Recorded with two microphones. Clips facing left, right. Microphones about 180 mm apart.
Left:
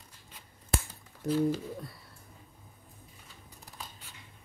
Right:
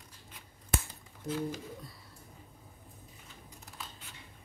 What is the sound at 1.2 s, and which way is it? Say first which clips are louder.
Speech: left 6 dB; 65° left (ahead or behind).